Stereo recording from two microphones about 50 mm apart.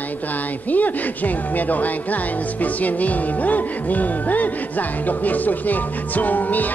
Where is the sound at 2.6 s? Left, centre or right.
Left.